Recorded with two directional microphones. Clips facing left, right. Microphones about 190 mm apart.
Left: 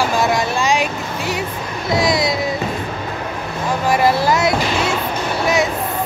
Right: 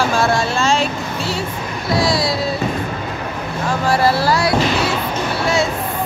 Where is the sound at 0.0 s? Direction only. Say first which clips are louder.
Even; 15° left (ahead or behind).